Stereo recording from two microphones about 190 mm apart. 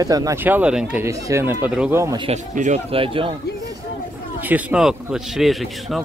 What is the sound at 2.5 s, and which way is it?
Speech, 40° right (ahead or behind).